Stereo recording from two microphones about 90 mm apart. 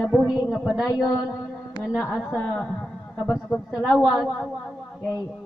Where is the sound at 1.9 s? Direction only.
15° left (ahead or behind).